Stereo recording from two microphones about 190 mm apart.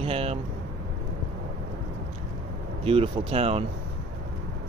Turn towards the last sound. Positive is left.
turn(degrees=-30)  # may be behind; listen again after turning